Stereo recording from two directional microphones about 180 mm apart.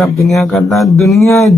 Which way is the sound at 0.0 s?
15° left (ahead or behind).